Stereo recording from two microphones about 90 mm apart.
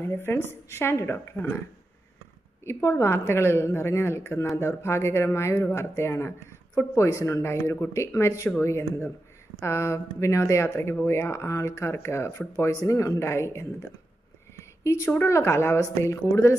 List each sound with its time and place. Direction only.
0.0 s a woman's voice: 25° left (ahead or behind)
2.6 s a woman's voice: 30° left (ahead or behind)
14.6 s a sound: 35° left (ahead or behind)
15.1 s speech: 30° left (ahead or behind)